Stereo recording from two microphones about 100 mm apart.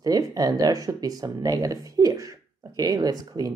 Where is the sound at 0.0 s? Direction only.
40° right (ahead or behind).